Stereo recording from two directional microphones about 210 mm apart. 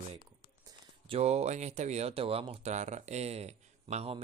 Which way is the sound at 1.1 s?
30° right (ahead or behind).